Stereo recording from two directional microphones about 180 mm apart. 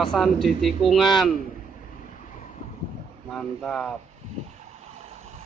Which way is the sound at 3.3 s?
Centre (ahead or behind).